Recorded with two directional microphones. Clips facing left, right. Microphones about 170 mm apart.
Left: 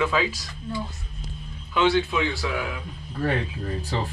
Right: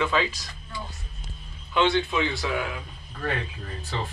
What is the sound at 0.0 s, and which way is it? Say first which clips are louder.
Speech: left 1 dB; 5° left (ahead or behind).